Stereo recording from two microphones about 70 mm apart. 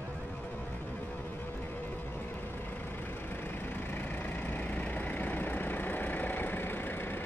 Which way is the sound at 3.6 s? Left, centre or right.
Left.